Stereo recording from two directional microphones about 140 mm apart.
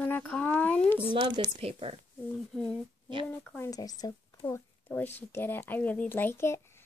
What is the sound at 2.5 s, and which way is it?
Speech, 5° left (ahead or behind).